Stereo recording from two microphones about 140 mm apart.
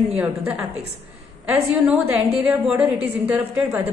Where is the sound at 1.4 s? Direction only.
10° right (ahead or behind).